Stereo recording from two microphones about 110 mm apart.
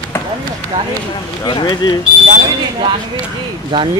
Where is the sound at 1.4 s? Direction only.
40° left (ahead or behind).